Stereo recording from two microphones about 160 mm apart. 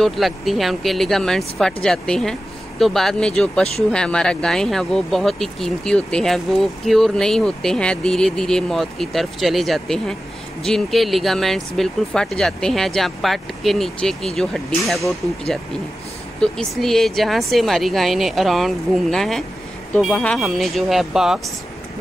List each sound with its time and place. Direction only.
0.0 s speech: centre (ahead or behind)